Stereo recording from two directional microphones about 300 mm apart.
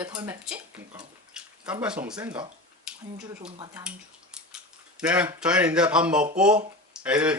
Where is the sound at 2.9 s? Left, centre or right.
Centre.